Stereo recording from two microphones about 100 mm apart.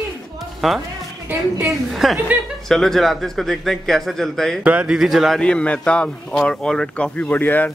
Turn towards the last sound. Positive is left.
turn(degrees=15)  # may be behind; listen again after turning